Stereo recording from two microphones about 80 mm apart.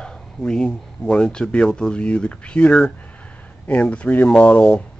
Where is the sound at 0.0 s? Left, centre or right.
Centre.